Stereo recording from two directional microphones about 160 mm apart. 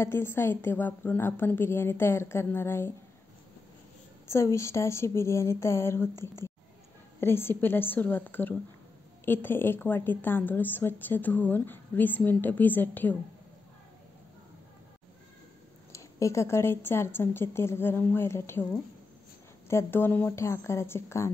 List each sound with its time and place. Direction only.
0.0 s a woman's voice: 15° left (ahead or behind)
4.3 s a woman's voice: 15° left (ahead or behind)
6.1 s speech: 25° right (ahead or behind)
7.2 s a woman's voice: 15° left (ahead or behind)
15.9 s a woman's voice: 20° left (ahead or behind)
19.7 s a woman's voice: 15° left (ahead or behind)